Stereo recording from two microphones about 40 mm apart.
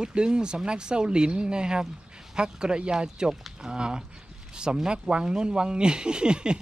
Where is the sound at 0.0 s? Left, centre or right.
Right.